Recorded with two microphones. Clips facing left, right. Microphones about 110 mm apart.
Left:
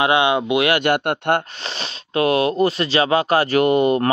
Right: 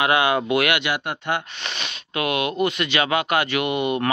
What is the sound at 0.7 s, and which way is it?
Speech, 55° left (ahead or behind).